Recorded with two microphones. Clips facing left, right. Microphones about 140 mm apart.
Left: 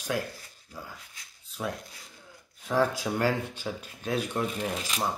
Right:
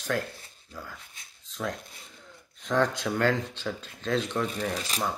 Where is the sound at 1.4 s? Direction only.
10° left (ahead or behind).